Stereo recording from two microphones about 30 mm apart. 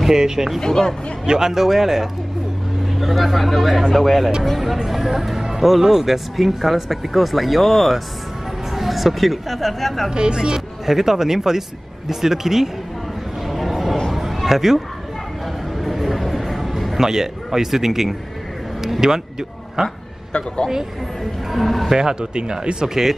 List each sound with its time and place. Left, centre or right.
0.1 s speech: centre
0.6 s speech: centre
1.2 s speech: right
1.5 s speech: centre
10.1 s speech: right
10.9 s speech: centre
13.5 s a sound: centre
14.1 s a sound: centre
15.8 s a sound: centre
17.0 s speech: centre
21.5 s speech: centre
21.9 s speech: right